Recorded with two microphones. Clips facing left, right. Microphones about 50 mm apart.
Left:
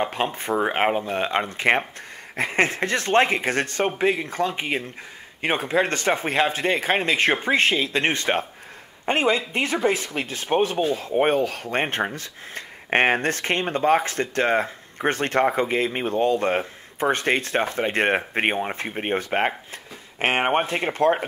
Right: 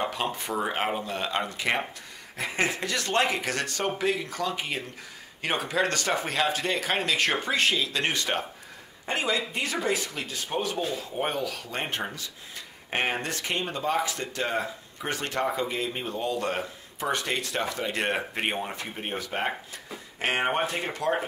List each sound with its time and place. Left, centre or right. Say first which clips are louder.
0.0 s speech: left 4 dB; left